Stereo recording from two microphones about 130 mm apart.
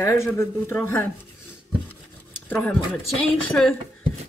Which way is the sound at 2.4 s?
10° left (ahead or behind).